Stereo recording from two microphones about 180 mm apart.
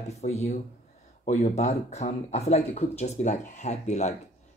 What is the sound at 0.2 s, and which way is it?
Speech, 40° left (ahead or behind).